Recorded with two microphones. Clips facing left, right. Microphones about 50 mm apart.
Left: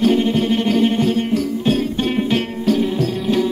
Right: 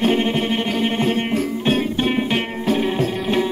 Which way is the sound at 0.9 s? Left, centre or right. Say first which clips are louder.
Left 2 dB; right.